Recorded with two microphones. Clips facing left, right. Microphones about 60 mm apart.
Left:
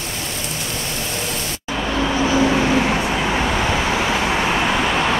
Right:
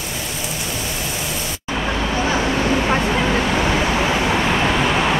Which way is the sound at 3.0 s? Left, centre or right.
Centre.